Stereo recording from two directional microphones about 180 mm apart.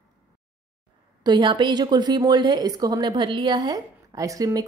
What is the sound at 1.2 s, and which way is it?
A woman's voice, 25° right (ahead or behind).